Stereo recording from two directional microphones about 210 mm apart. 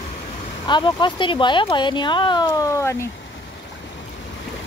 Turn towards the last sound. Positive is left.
turn(degrees=15)  # may be behind; listen again after turning